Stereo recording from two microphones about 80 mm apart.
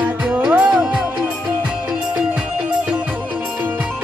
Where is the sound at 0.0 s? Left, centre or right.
Centre.